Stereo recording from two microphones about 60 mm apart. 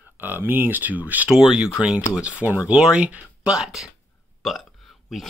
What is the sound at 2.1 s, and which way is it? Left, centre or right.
Speech, right.